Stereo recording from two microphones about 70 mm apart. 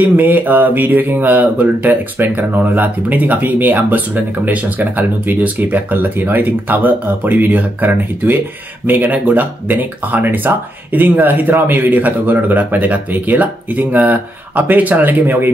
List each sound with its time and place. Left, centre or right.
0.0 s speech: right